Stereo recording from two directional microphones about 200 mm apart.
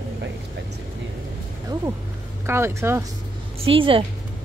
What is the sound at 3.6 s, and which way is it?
Speech, 25° right (ahead or behind).